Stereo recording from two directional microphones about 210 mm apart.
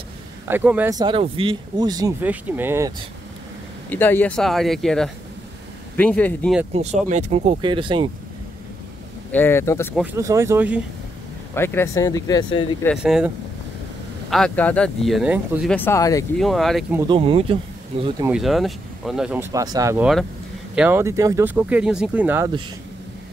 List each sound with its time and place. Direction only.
0.5 s speech: 10° right (ahead or behind)
3.9 s speech: 10° left (ahead or behind)
6.7 s speech: 30° right (ahead or behind)
9.3 s speech: 10° left (ahead or behind)
10.1 s speech: 15° right (ahead or behind)
11.5 s speech: 10° left (ahead or behind)
12.9 s speech: 5° right (ahead or behind)
14.3 s speech: 5° left (ahead or behind)
15.7 s speech: 10° left (ahead or behind)
16.3 s speech: centre (ahead or behind)
17.1 s speech: 25° right (ahead or behind)
18.2 s speech: 5° right (ahead or behind)